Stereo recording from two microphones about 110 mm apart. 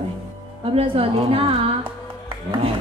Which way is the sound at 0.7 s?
60° right (ahead or behind).